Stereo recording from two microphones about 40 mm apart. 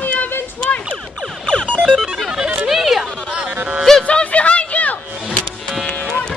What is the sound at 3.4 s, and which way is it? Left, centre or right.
Speech, right.